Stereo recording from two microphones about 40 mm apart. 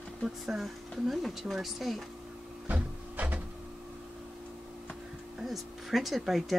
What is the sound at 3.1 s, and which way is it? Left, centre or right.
Printer, right.